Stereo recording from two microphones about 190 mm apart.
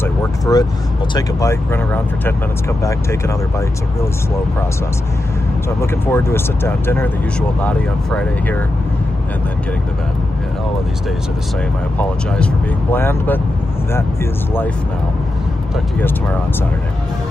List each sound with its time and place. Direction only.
0.0 s vehicle: 20° left (ahead or behind)
1.1 s speech: 15° left (ahead or behind)
2.8 s speech: 15° left (ahead or behind)
5.8 s speech: 15° left (ahead or behind)
12.9 s speech: 10° left (ahead or behind)